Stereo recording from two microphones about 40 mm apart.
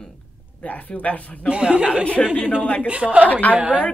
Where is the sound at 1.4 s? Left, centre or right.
Right.